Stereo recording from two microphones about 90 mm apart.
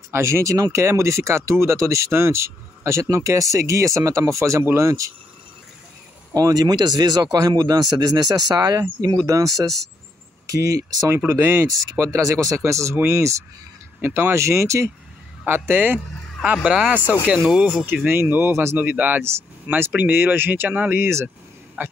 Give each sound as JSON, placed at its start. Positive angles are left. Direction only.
{"t": 0.1, "sound": "speech", "side_deg": -30}
{"t": 6.3, "sound": "speech", "side_deg": -45}
{"t": 11.1, "sound": "speech", "side_deg": -25}
{"t": 14.0, "sound": "speech", "side_deg": -25}
{"t": 16.6, "sound": "speech", "side_deg": -10}
{"t": 18.0, "sound": "speech", "side_deg": -25}
{"t": 18.8, "sound": "speech", "side_deg": -20}